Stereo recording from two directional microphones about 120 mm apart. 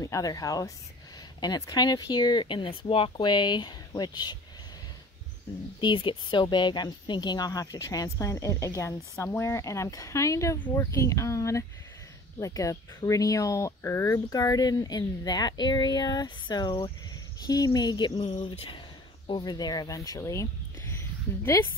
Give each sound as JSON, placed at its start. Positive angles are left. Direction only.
{"t": 0.0, "sound": "speech", "side_deg": 30}
{"t": 5.8, "sound": "speech", "side_deg": 40}
{"t": 18.2, "sound": "speech", "side_deg": 50}
{"t": 19.2, "sound": "speech", "side_deg": 40}